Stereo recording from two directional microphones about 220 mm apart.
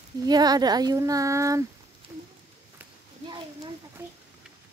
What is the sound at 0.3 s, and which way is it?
A child's voice, 20° right (ahead or behind).